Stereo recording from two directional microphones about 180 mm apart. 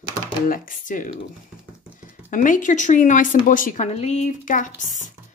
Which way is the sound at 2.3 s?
45° left (ahead or behind).